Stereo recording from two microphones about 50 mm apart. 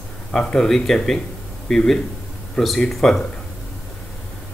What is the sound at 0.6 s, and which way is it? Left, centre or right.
Speech, centre.